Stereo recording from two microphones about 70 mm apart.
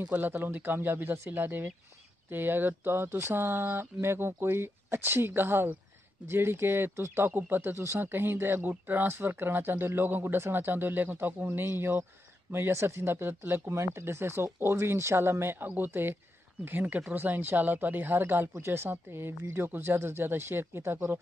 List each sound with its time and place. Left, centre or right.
0.0 s speech: right
13.7 s speech: right